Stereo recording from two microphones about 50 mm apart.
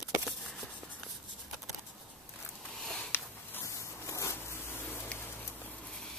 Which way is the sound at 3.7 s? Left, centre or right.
Left.